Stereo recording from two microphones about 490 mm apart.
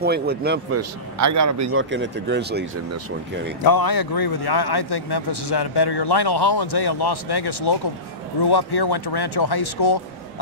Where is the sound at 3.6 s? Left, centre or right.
Left.